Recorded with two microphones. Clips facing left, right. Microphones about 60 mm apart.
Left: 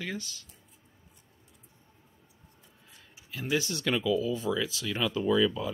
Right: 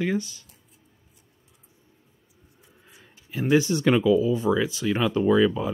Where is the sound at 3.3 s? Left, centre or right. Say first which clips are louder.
Right 10 dB; right.